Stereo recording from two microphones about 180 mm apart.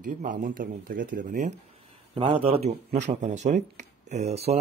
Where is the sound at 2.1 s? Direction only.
30° right (ahead or behind).